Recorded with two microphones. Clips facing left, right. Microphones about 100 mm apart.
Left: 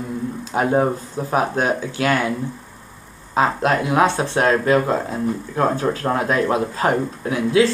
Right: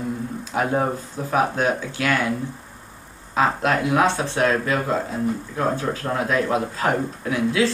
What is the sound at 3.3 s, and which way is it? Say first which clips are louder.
Speech: left 2 dB; 35° left (ahead or behind).